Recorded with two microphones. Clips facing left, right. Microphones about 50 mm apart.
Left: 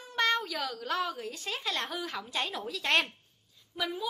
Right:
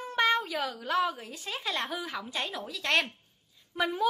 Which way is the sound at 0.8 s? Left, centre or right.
Centre.